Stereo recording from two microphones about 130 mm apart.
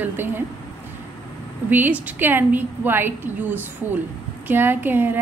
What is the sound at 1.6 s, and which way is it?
Speech, 15° right (ahead or behind).